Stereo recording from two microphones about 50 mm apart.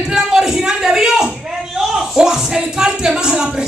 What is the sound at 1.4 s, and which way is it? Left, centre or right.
Music, centre.